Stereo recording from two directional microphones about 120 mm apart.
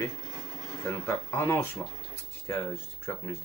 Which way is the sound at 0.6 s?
25° left (ahead or behind).